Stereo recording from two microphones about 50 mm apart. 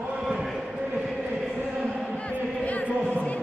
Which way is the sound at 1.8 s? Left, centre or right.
Left.